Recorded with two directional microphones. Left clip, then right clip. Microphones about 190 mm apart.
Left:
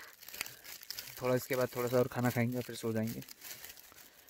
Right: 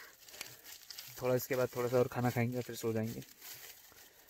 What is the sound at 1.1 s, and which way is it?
Speech, 10° left (ahead or behind).